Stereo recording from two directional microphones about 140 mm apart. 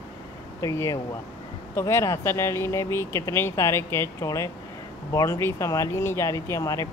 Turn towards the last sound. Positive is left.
turn(degrees=25)  # may be behind; listen again after turning